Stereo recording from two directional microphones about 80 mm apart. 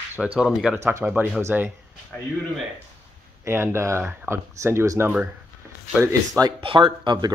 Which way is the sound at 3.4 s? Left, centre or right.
Right.